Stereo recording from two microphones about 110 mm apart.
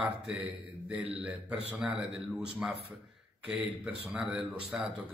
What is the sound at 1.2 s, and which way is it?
A man's voice, 15° right (ahead or behind).